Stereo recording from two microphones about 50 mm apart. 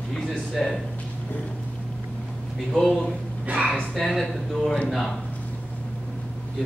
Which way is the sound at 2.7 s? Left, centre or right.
Centre.